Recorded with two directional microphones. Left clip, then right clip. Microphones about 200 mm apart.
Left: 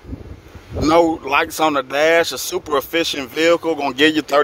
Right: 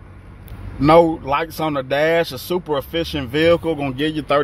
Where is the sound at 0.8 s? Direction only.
10° left (ahead or behind).